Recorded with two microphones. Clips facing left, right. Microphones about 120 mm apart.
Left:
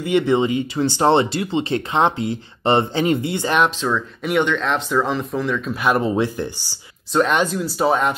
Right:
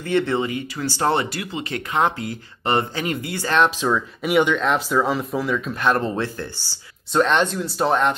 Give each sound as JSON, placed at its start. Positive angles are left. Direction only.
{"t": 0.0, "sound": "speech", "side_deg": 15}
{"t": 3.8, "sound": "speech", "side_deg": -5}
{"t": 5.9, "sound": "speech", "side_deg": 10}
{"t": 7.2, "sound": "speech", "side_deg": 5}